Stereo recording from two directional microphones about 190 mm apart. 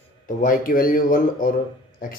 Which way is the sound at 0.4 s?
50° left (ahead or behind).